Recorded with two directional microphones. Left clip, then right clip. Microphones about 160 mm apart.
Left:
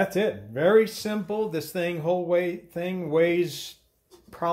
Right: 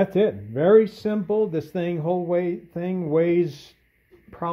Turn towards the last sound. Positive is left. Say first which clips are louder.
# left 2 dB
turn(degrees=-25)  # may be behind; listen again after turning